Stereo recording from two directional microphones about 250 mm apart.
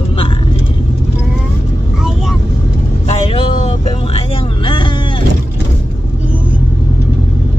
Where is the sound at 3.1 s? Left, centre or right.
Left.